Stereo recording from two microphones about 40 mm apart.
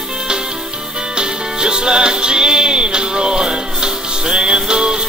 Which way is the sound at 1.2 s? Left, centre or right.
Right.